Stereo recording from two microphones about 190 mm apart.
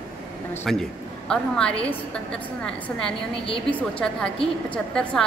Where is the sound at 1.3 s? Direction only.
5° left (ahead or behind).